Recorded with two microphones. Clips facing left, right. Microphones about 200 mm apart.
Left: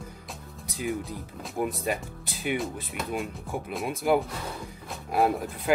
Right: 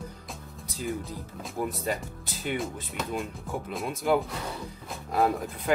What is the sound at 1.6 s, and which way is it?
Speech, 15° left (ahead or behind).